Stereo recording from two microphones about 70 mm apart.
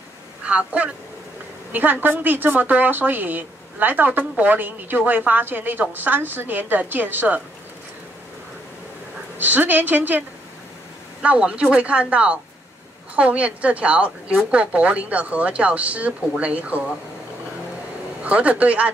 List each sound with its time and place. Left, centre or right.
0.4 s a woman's voice: centre
9.4 s a woman's voice: right
11.2 s a woman's voice: centre
18.2 s a woman's voice: centre